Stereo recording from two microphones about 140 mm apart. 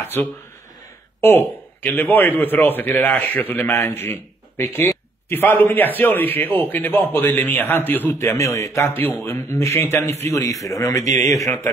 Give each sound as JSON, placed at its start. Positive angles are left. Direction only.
{"t": 0.0, "sound": "a man's voice", "side_deg": 15}